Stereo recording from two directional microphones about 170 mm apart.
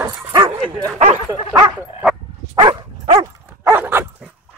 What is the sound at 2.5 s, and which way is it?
Dog, 30° right (ahead or behind).